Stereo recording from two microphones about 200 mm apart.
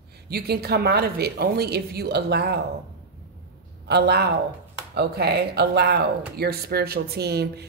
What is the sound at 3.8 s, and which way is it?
A woman's voice, 55° right (ahead or behind).